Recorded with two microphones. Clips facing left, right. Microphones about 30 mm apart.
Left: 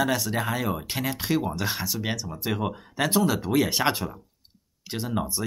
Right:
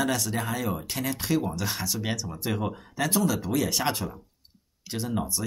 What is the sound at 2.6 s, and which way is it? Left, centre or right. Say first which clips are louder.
Speech: left 2 dB; left.